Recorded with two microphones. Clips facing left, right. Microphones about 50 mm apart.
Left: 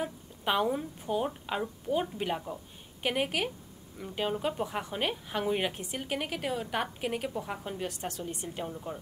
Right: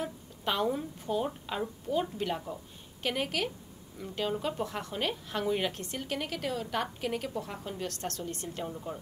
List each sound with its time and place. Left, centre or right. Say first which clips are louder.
0.0 s a woman's voice: left 1 dB; centre